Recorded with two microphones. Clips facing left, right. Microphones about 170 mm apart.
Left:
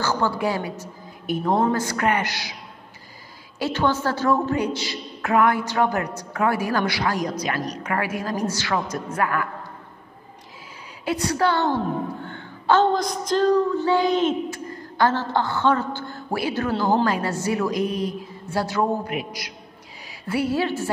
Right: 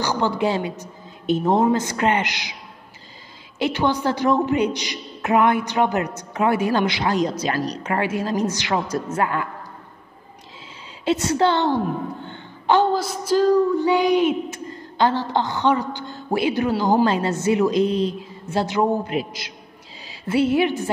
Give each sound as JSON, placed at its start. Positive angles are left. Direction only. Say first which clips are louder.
{"t": 0.0, "sound": "a woman's voice", "louder": "right 2 dB", "side_deg": -20}
{"t": 3.5, "sound": "a woman's voice", "louder": "right 1 dB", "side_deg": -15}
{"t": 11.1, "sound": "a woman's voice", "louder": "right 3 dB", "side_deg": -25}
{"t": 12.3, "sound": "a sound", "louder": "right 1 dB", "side_deg": -20}
{"t": 12.9, "sound": "a sound", "louder": "right 2 dB", "side_deg": -5}
{"t": 14.7, "sound": "a woman's voice", "louder": "right 1 dB", "side_deg": -20}